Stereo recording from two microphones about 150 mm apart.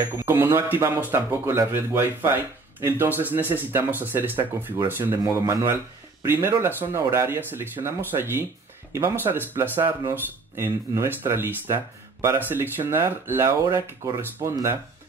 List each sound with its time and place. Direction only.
0.2 s speech: 15° right (ahead or behind)